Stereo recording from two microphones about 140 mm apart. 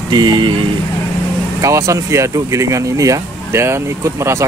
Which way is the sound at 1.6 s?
20° right (ahead or behind).